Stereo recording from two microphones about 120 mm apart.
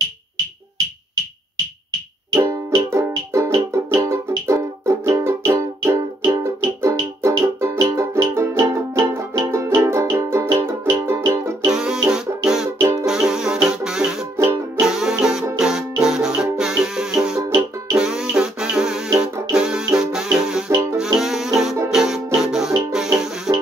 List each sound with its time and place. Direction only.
2.3 s music: 25° right (ahead or behind)
11.7 s music: 5° right (ahead or behind)
14.3 s music: 25° right (ahead or behind)
14.8 s music: 5° right (ahead or behind)